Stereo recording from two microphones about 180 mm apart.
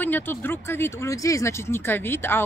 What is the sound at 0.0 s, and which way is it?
Speech, 10° left (ahead or behind).